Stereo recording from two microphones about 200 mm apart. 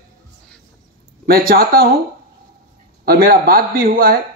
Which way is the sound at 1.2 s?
45° right (ahead or behind).